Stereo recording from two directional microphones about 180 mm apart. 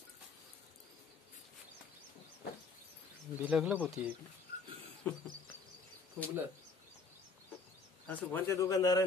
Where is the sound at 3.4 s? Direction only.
10° right (ahead or behind).